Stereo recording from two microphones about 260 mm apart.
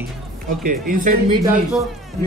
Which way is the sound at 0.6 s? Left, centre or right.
Right.